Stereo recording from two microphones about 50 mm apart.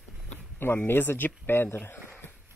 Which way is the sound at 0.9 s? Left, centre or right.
Left.